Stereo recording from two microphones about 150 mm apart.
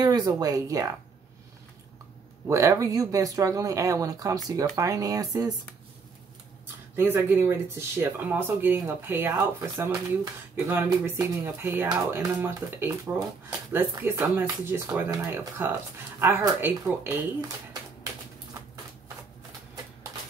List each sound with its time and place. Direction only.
0.0 s speech: 25° right (ahead or behind)
2.4 s speech: 20° right (ahead or behind)
7.0 s speech: 15° right (ahead or behind)
10.5 s speech: 15° right (ahead or behind)